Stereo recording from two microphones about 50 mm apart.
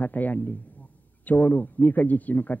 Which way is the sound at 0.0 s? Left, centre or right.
Left.